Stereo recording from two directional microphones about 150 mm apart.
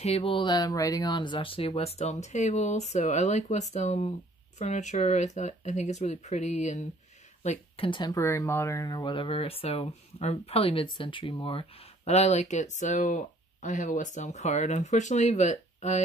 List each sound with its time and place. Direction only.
0.0 s speech: 40° left (ahead or behind)
7.4 s speech: 35° left (ahead or behind)